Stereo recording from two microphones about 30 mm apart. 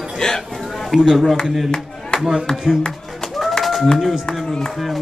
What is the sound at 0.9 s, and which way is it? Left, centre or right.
Speech, centre.